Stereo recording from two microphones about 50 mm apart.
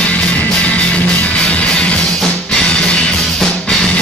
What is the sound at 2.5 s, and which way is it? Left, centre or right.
Music, centre.